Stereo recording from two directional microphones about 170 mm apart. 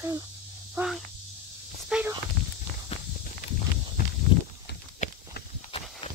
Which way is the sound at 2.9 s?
35° left (ahead or behind).